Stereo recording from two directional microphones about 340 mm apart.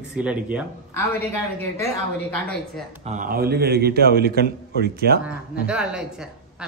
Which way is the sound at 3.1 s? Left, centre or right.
Right.